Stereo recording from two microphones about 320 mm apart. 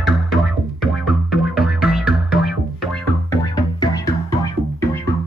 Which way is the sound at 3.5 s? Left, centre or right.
Centre.